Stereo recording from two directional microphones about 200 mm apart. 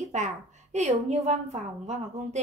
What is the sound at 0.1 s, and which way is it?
A woman's voice, 35° right (ahead or behind).